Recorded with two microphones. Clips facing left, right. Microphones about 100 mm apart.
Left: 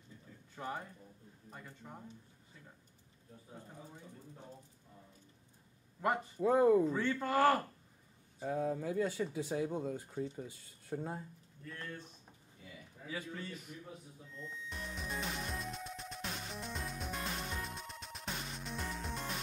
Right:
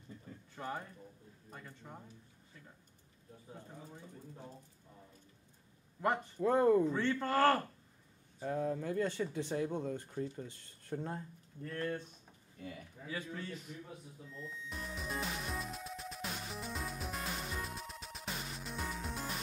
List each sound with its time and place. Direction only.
0.6 s a man's voice: 10° left (ahead or behind)
5.9 s speech: 5° left (ahead or behind)
11.6 s speech: 55° right (ahead or behind)
13.0 s a man's voice: 5° left (ahead or behind)
14.3 s music: centre (ahead or behind)